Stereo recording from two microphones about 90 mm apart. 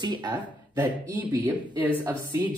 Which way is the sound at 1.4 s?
20° right (ahead or behind).